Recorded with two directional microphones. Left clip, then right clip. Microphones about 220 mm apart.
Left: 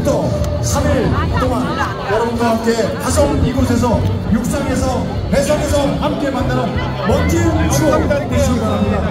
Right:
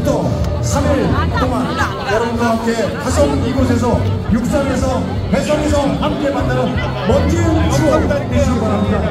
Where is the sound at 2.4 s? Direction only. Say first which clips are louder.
Left 1 dB; 45° left (ahead or behind).